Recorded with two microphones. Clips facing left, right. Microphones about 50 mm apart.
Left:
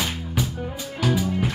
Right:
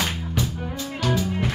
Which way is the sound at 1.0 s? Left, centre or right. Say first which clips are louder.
Left 1 dB; centre.